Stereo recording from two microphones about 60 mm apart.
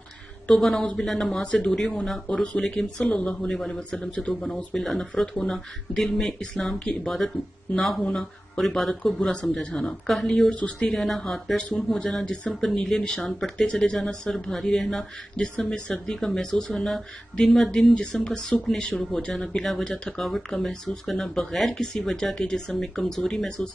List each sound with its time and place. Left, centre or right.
0.5 s speech: centre
1.4 s speech: centre
1.7 s speech: centre
10.0 s speech: centre
10.5 s speech: left
10.9 s speech: centre
15.3 s speech: centre